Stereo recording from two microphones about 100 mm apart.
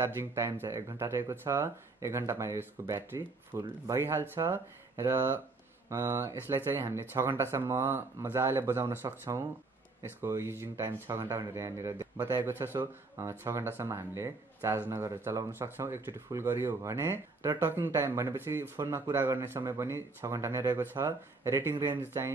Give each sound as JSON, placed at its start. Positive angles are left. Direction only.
{"t": 0.0, "sound": "speech", "side_deg": -25}